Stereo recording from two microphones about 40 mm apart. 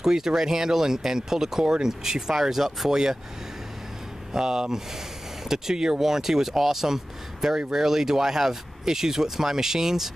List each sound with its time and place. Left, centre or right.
0.0 s speech: centre
4.3 s speech: centre